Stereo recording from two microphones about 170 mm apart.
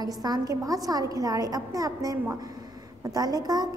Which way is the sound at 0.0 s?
25° right (ahead or behind).